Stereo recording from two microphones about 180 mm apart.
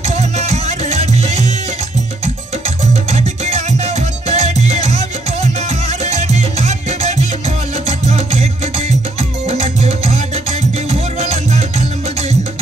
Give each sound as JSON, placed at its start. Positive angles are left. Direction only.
{"t": 0.4, "sound": "music", "side_deg": -35}
{"t": 3.1, "sound": "music", "side_deg": -35}